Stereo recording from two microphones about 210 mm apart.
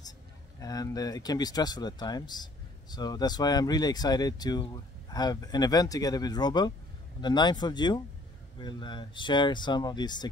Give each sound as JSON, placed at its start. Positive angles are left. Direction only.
{"t": 0.6, "sound": "speech", "side_deg": 15}